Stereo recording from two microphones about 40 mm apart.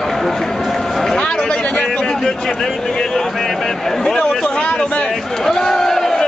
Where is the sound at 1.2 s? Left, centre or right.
Left.